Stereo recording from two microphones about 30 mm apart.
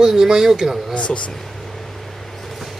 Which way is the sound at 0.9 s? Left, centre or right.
Left.